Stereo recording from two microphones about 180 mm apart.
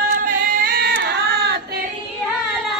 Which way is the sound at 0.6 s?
55° right (ahead or behind).